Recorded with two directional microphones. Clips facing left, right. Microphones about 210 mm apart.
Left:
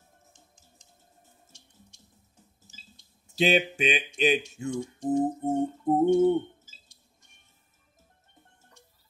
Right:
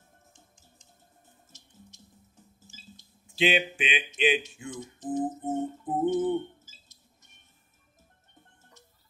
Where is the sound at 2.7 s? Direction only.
40° left (ahead or behind).